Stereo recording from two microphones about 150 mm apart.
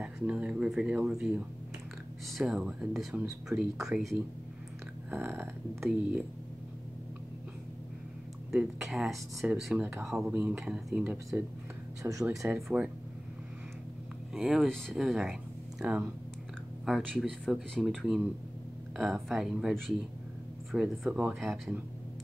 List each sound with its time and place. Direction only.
0.0 s speech: 5° right (ahead or behind)
5.1 s speech: 15° right (ahead or behind)
8.5 s speech: centre (ahead or behind)
9.8 s speech: 10° right (ahead or behind)
12.0 s speech: 20° right (ahead or behind)
12.4 s speech: 5° right (ahead or behind)
14.3 s speech: 5° right (ahead or behind)
16.8 s speech: centre (ahead or behind)